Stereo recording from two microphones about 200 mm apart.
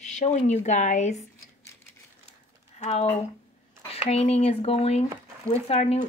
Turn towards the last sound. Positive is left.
turn(degrees=30)  # may be behind; listen again after turning